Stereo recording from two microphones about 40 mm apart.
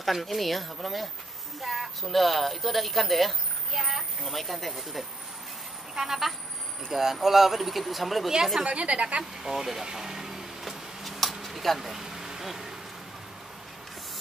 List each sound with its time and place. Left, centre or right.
0.0 s speech: centre
8.6 s a woman's voice: right
9.4 s a sound: centre
11.4 s insect: centre